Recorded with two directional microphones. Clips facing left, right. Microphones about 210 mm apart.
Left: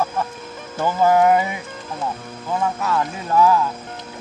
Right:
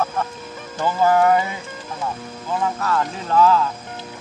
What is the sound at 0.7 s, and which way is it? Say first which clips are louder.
Speech: left 1 dB; 15° left (ahead or behind).